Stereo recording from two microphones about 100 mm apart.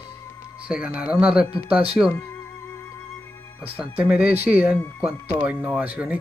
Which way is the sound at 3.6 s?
15° right (ahead or behind).